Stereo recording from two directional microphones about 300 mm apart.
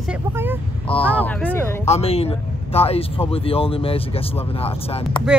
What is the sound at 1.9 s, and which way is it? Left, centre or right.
Speech, left.